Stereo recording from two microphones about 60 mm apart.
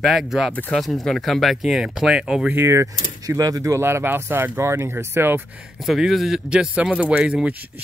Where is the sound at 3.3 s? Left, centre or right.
Right.